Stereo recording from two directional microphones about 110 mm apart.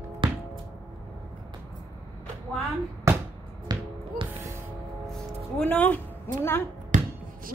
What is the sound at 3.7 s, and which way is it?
Basketball bounce, 40° right (ahead or behind).